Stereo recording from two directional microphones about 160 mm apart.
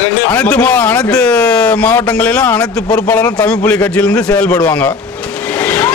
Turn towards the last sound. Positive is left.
turn(degrees=10)  # may be behind; listen again after turning